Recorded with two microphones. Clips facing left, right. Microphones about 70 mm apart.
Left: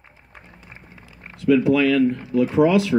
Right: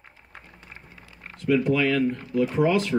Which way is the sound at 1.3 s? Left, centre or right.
Left.